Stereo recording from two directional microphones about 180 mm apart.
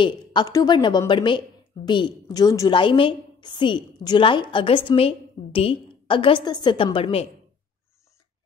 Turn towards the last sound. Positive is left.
turn(degrees=30)  # may be behind; listen again after turning